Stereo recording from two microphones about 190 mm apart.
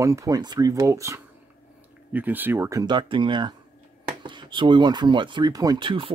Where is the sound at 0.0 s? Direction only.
15° right (ahead or behind).